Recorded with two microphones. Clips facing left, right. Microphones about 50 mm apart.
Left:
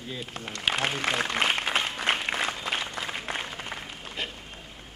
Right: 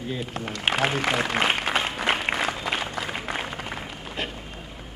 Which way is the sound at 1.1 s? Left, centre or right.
Centre.